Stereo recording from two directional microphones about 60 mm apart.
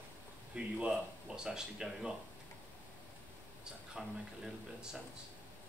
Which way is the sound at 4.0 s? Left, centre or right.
Centre.